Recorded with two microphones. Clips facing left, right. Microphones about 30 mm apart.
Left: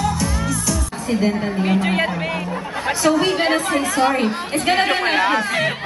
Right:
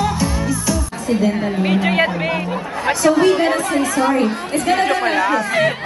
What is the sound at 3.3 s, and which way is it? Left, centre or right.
Speech, left.